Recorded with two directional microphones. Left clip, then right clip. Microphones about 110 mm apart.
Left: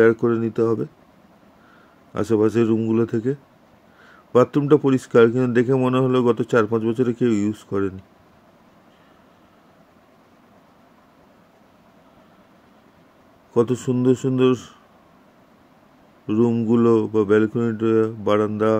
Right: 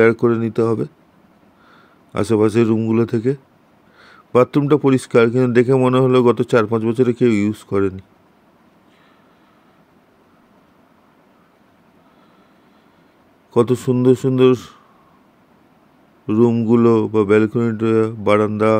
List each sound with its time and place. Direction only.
0.0 s speech: 55° right (ahead or behind)
2.1 s speech: 60° right (ahead or behind)
13.5 s speech: 55° right (ahead or behind)
16.3 s speech: 55° right (ahead or behind)